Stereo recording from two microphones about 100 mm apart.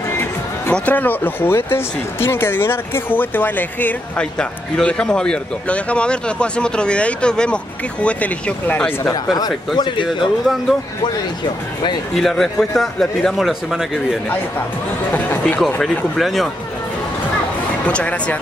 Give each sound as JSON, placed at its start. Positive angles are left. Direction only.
{"t": 0.2, "sound": "speech", "side_deg": 15}
{"t": 9.1, "sound": "speech", "side_deg": 45}
{"t": 9.8, "sound": "speech", "side_deg": 55}
{"t": 10.0, "sound": "speech", "side_deg": 0}
{"t": 12.2, "sound": "speech", "side_deg": 5}
{"t": 16.2, "sound": "speech", "side_deg": 0}
{"t": 17.8, "sound": "speech", "side_deg": 10}